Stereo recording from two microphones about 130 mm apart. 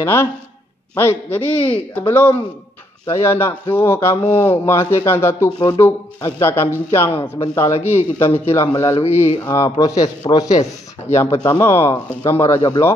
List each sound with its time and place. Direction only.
0.0 s speech: 20° left (ahead or behind)
10.5 s speech: 60° left (ahead or behind)
11.1 s speech: 30° left (ahead or behind)
11.9 s speech: 35° left (ahead or behind)